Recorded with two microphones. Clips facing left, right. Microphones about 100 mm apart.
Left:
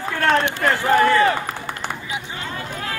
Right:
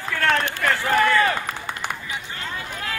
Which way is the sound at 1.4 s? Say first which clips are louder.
Left 1 dB; 20° right (ahead or behind).